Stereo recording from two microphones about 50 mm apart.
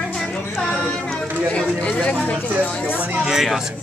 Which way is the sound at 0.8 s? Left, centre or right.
Centre.